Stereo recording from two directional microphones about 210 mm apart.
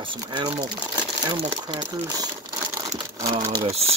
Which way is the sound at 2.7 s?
15° right (ahead or behind).